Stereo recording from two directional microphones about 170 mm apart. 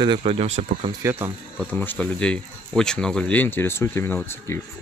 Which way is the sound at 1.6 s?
10° left (ahead or behind).